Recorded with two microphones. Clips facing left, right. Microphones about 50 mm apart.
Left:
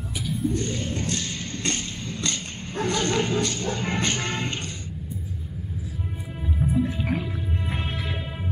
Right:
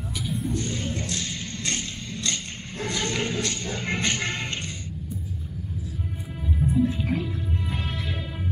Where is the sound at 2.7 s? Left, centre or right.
Left.